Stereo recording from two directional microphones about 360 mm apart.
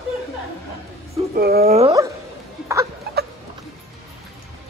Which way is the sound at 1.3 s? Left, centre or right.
Right.